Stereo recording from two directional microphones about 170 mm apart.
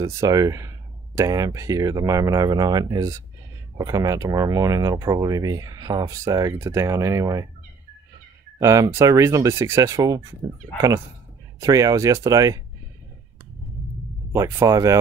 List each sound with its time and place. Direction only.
0.0 s speech: 20° right (ahead or behind)
8.5 s speech: 20° right (ahead or behind)
11.6 s speech: 20° right (ahead or behind)
14.3 s speech: 15° right (ahead or behind)